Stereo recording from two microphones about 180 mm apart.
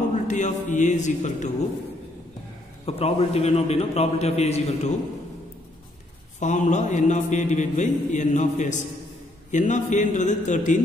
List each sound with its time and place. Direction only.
0.1 s a man's voice: 45° left (ahead or behind)
2.8 s a man's voice: 35° left (ahead or behind)
6.4 s a man's voice: 45° left (ahead or behind)